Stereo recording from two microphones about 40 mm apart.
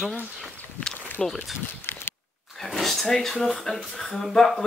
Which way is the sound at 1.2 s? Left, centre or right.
Centre.